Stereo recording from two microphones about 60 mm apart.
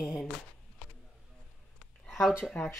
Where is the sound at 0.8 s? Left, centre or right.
Centre.